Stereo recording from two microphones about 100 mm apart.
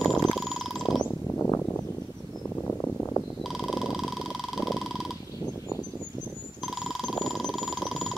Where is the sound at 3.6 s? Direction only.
Centre (ahead or behind).